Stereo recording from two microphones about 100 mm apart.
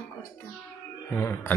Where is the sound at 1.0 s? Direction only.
25° left (ahead or behind).